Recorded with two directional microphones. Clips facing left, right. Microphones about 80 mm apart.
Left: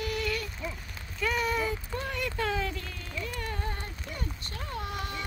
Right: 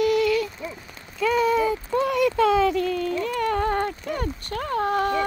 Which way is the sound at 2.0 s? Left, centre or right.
Right.